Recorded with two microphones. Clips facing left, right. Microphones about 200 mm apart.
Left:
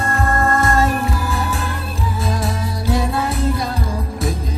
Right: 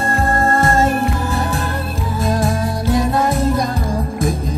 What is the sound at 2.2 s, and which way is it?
Music, 45° right (ahead or behind).